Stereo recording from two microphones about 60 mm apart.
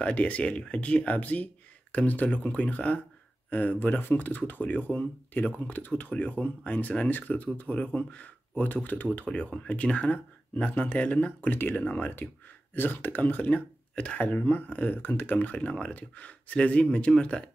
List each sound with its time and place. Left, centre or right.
0.0 s speech: left